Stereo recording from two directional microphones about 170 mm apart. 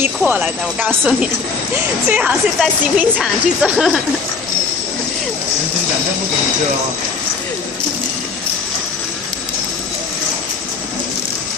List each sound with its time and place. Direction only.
0.0 s speech: 10° right (ahead or behind)